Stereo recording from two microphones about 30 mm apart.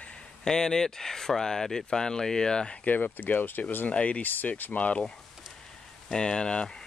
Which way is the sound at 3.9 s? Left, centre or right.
Left.